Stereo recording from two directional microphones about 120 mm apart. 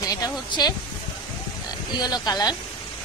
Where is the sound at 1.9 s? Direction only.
35° left (ahead or behind).